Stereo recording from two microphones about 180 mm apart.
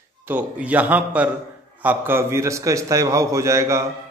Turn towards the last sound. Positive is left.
turn(degrees=-15)  # may be behind; listen again after turning